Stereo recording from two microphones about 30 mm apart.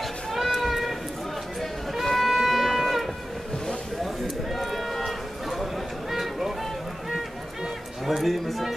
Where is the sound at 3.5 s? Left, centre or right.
Left.